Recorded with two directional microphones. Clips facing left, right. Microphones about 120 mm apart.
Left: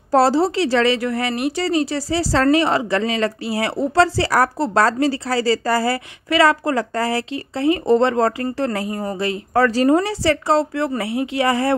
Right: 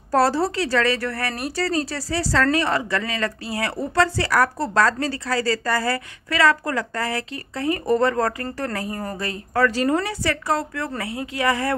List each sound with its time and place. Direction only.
0.1 s a woman's voice: 25° left (ahead or behind)
8.8 s speech: 15° left (ahead or behind)
9.5 s a woman's voice: 35° left (ahead or behind)